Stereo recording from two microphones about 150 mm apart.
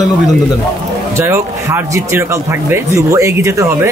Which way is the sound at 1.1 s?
15° right (ahead or behind).